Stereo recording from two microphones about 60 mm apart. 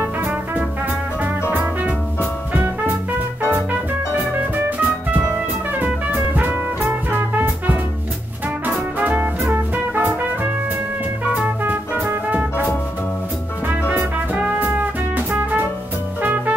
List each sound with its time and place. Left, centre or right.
4.6 s music: right
9.0 s music: right
11.6 s music: right
13.8 s music: right